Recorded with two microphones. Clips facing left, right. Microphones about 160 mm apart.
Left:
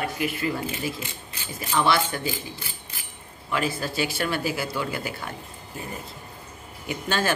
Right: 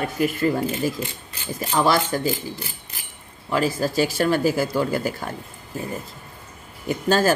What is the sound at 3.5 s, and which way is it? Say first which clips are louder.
A woman's voice: right 5 dB; 40° right (ahead or behind).